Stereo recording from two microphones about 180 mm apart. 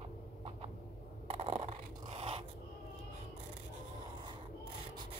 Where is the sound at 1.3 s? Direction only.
35° right (ahead or behind).